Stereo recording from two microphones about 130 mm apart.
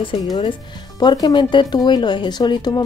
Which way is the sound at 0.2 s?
30° left (ahead or behind).